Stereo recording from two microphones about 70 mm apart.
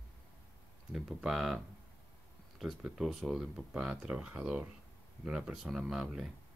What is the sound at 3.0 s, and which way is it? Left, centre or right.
Speech, centre.